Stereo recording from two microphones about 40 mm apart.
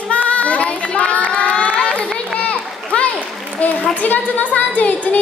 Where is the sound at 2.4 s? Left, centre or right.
Left.